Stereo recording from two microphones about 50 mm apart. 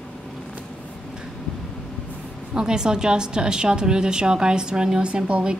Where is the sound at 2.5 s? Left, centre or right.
Centre.